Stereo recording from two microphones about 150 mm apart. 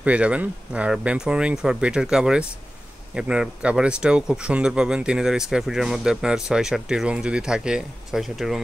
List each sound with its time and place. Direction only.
0.0 s speech: 10° right (ahead or behind)